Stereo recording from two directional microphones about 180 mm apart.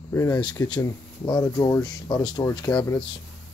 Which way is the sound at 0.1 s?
20° left (ahead or behind).